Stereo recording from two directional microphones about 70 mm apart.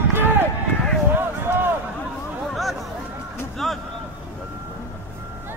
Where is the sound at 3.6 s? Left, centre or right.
Centre.